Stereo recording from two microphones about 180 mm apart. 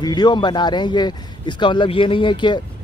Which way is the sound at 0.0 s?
25° left (ahead or behind).